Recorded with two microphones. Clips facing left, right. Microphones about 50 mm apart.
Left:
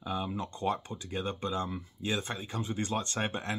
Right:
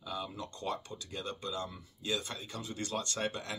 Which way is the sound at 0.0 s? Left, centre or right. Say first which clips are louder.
Left 5 dB; left.